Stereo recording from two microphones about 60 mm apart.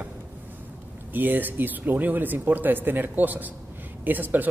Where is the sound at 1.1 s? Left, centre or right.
Right.